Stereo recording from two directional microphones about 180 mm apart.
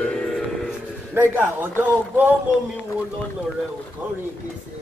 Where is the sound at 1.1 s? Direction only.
10° right (ahead or behind).